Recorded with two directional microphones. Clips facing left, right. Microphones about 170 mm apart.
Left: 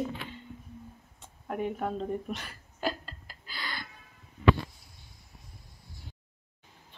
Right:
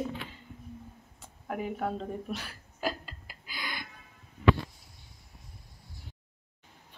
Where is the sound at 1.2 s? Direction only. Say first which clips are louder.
Left 2 dB; 5° right (ahead or behind).